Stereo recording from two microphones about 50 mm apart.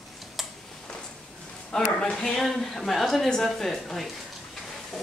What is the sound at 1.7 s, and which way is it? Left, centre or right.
Speech, centre.